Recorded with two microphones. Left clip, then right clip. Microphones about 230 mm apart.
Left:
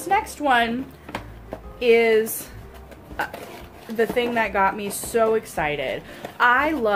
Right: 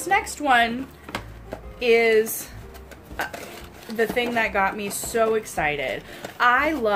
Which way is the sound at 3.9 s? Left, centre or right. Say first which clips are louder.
Left 1 dB; centre.